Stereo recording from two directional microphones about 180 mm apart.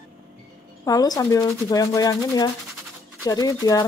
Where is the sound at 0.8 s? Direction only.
20° left (ahead or behind).